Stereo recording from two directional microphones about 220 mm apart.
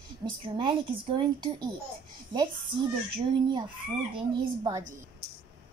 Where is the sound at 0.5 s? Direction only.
20° right (ahead or behind).